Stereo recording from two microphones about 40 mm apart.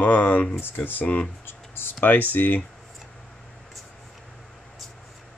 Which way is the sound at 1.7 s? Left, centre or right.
Left.